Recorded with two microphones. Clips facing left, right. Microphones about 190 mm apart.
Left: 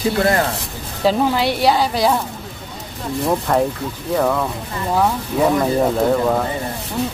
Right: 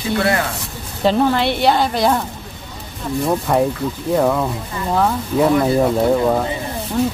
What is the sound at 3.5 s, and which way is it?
Speech, 5° right (ahead or behind).